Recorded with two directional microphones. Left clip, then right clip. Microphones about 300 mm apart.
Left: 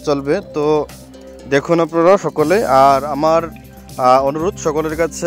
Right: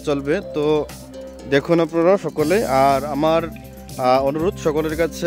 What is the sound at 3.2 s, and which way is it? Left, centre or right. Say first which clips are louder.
Speech: left 4 dB; centre.